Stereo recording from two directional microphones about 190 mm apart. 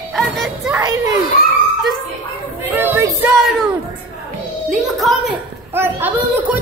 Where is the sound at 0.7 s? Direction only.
15° right (ahead or behind).